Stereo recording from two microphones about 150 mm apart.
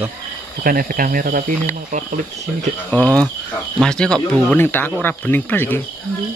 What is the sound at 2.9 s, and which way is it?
Speech, 10° left (ahead or behind).